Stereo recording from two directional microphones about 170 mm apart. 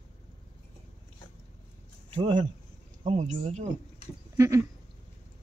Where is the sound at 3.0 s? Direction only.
40° right (ahead or behind).